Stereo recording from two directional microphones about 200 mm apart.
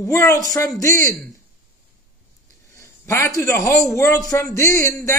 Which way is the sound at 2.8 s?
15° left (ahead or behind).